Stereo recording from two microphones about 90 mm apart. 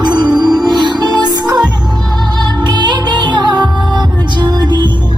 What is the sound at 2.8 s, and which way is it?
Music, 55° right (ahead or behind).